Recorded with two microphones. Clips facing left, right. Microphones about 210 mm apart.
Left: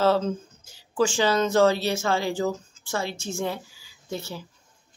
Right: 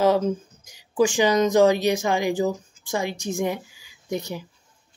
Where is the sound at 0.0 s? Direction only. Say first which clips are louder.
Right 2 dB; 15° right (ahead or behind).